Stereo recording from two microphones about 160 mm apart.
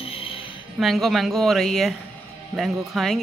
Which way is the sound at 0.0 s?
35° left (ahead or behind).